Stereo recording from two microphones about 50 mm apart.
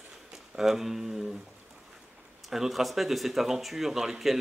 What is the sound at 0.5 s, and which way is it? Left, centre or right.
Speech, centre.